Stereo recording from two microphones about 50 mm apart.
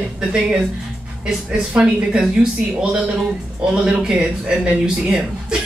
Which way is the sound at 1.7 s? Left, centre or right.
Centre.